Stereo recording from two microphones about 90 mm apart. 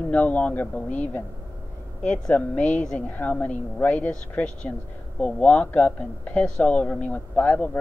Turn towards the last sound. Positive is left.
turn(degrees=20)  # may be behind; listen again after turning